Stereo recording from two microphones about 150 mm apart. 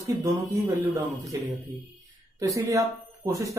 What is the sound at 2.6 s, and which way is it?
Speech, 20° right (ahead or behind).